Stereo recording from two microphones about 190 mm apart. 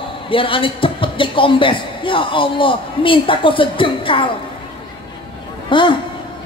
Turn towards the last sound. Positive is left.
turn(degrees=25)  # may be behind; listen again after turning